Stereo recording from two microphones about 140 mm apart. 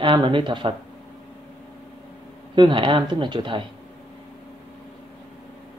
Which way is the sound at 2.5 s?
35° right (ahead or behind).